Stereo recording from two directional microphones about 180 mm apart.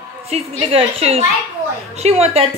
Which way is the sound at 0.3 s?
35° right (ahead or behind).